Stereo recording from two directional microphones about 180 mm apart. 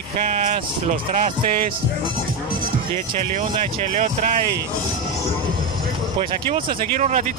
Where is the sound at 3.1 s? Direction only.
45° right (ahead or behind).